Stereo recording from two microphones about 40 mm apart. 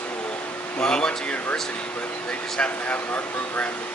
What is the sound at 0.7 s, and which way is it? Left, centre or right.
Speech, left.